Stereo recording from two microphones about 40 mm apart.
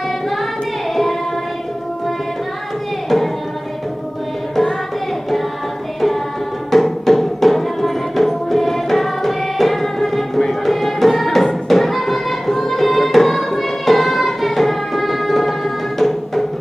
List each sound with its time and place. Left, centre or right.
6.7 s music: centre